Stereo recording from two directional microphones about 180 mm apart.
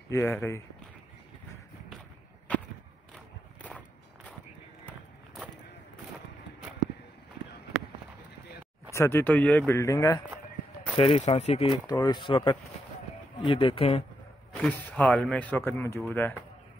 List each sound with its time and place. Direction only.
0.1 s speech: 15° left (ahead or behind)
2.5 s walk: 5° left (ahead or behind)
8.9 s speech: 15° left (ahead or behind)
11.0 s speech: 35° left (ahead or behind)
11.9 s speech: 20° left (ahead or behind)
14.5 s speech: 10° left (ahead or behind)